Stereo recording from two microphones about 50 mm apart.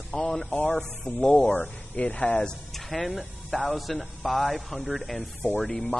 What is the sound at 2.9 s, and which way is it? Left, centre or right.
Speech, centre.